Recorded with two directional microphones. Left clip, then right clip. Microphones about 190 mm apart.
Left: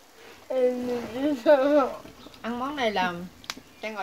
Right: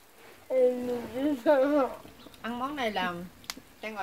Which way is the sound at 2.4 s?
15° right (ahead or behind).